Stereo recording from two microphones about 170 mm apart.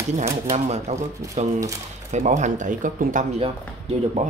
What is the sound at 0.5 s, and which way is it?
Speech, 40° right (ahead or behind).